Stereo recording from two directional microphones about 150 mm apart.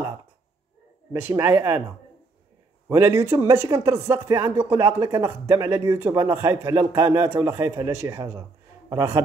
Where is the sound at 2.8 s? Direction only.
15° right (ahead or behind).